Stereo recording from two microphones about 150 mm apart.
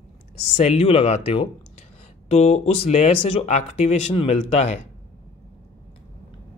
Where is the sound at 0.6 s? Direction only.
40° left (ahead or behind).